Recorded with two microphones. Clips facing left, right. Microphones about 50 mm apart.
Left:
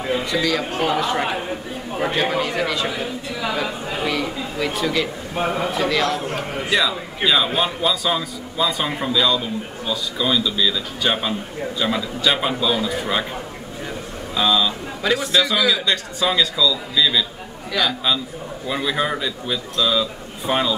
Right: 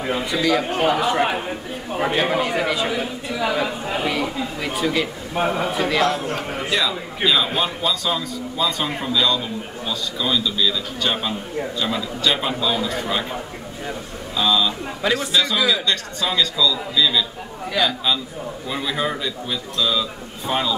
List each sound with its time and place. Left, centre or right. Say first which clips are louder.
0.1 s speech: right 1 dB; centre
6.2 s a man's voice: even; centre
14.3 s a man's voice: left 1 dB; centre
18.7 s a man's voice: left 2 dB; centre